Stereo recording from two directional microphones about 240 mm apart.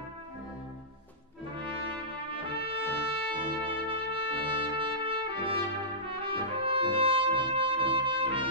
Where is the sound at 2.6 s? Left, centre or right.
Right.